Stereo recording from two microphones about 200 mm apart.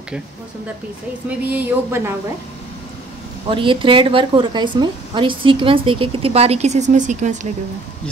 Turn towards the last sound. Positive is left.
turn(degrees=-40)  # may be behind; listen again after turning